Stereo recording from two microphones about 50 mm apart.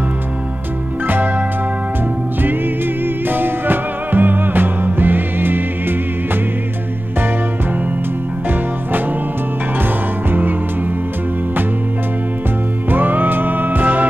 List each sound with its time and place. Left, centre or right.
1.0 s music: right
3.3 s music: right
12.9 s music: right